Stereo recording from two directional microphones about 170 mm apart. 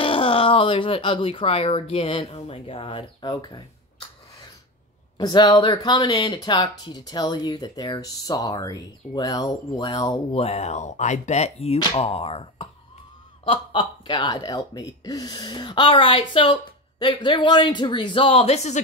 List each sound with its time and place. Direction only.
0.0 s speech: 30° left (ahead or behind)
5.1 s speech: 25° left (ahead or behind)